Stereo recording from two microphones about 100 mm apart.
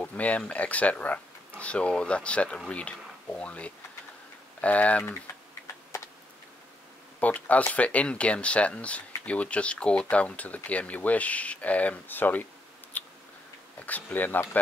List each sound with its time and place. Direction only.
0.0 s speech: 15° left (ahead or behind)
2.7 s a sound: 10° left (ahead or behind)
4.6 s speech: 15° left (ahead or behind)
5.5 s computer keyboard: 30° left (ahead or behind)
7.2 s speech: 15° left (ahead or behind)
12.9 s a sound: 15° left (ahead or behind)
13.8 s speech: 15° left (ahead or behind)